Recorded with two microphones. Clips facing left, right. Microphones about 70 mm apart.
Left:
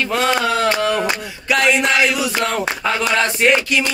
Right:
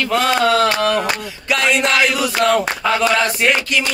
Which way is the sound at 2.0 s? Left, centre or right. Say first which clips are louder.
Right 3 dB; centre.